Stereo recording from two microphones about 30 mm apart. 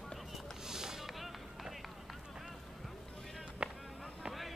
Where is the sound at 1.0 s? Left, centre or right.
Centre.